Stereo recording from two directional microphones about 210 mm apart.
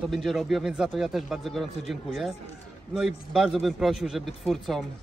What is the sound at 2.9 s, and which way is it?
A man's voice, 5° right (ahead or behind).